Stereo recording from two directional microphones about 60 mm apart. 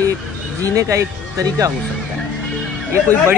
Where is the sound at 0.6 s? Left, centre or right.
Right.